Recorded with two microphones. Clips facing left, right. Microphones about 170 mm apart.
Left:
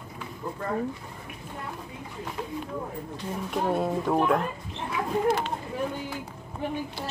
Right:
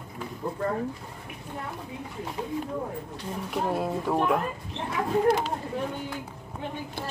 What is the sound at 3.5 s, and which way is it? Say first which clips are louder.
Speech: left 2 dB; centre (ahead or behind).